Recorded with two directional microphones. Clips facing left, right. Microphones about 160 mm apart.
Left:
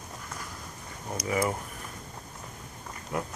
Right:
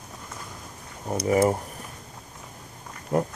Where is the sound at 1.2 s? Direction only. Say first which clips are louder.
Right 8 dB; 40° right (ahead or behind).